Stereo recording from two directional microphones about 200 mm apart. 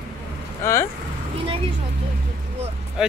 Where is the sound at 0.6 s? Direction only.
15° left (ahead or behind).